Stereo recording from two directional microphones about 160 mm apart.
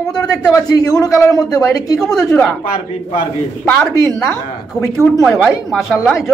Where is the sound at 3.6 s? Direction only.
5° left (ahead or behind).